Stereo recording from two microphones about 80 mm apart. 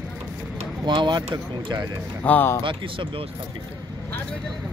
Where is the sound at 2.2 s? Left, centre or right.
Left.